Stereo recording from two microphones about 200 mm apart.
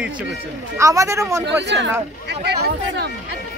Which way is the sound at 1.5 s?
60° right (ahead or behind).